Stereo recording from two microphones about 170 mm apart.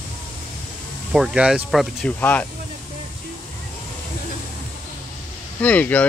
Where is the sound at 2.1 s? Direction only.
10° left (ahead or behind).